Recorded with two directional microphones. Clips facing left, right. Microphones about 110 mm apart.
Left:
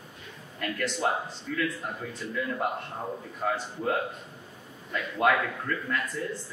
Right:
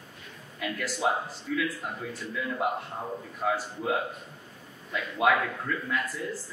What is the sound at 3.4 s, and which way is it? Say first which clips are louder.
A man's voice: even; 5° right (ahead or behind).